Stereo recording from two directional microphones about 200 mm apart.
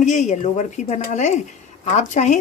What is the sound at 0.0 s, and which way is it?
Speech, 35° left (ahead or behind).